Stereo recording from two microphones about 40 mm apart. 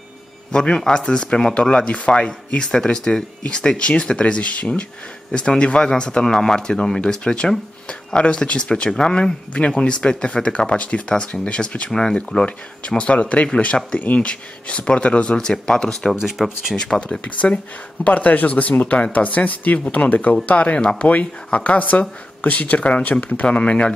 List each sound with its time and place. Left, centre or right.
0.5 s speech: left
12.4 s speech: left
14.3 s speech: left
15.3 s speech: centre
16.2 s speech: centre
16.7 s speech: centre
17.4 s speech: left